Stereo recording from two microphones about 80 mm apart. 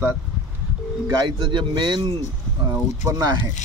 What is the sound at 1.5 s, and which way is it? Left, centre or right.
Speech, right.